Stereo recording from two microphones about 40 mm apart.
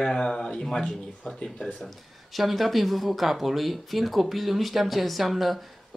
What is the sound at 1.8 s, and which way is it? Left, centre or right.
Speech, centre.